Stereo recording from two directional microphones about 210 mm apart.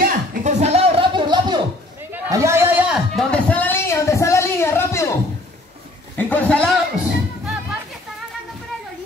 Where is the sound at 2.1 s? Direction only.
15° right (ahead or behind); by 6.6 s 5° left (ahead or behind).